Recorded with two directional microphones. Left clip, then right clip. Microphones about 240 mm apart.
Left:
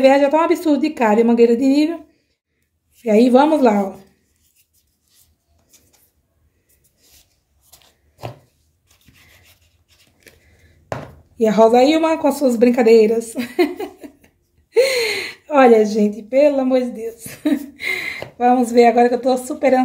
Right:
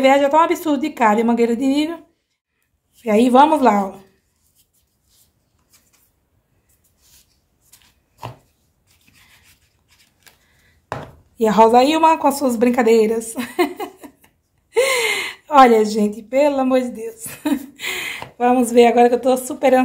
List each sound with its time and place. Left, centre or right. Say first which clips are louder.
0.0 s speech: even; centre
3.0 s speech: even; centre
11.3 s a woman's voice: even; centre